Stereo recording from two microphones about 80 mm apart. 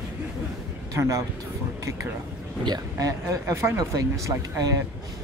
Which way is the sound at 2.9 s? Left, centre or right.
Right.